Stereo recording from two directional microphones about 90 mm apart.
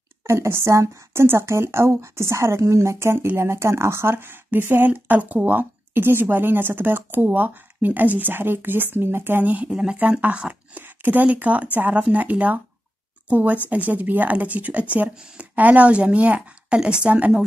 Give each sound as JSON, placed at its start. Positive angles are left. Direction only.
{"t": 0.3, "sound": "a woman's voice", "side_deg": -30}